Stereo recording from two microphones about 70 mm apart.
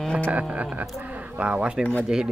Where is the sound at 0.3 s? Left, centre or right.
Right.